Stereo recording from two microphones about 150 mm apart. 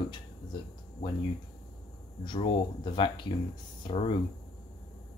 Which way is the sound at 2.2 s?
30° left (ahead or behind).